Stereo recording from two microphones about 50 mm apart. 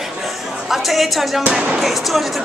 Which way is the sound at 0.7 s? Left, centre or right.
Centre.